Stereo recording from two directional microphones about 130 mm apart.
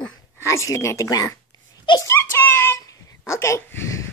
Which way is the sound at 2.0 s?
20° left (ahead or behind).